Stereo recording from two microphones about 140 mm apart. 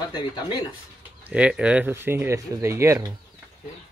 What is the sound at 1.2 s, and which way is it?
Speech, 10° right (ahead or behind).